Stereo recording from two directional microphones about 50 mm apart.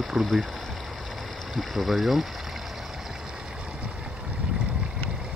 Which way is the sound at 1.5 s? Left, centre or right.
Centre.